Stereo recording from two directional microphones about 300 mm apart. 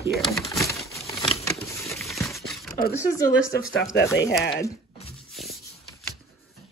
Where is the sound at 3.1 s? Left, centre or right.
Centre.